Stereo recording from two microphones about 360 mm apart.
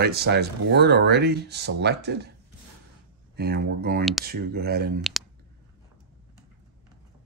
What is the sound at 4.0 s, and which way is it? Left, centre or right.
Speech, centre.